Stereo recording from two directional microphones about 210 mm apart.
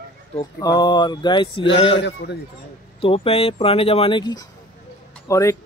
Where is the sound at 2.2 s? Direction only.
50° left (ahead or behind).